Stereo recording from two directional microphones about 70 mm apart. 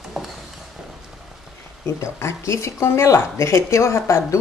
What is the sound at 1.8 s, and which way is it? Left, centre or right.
Speech, left.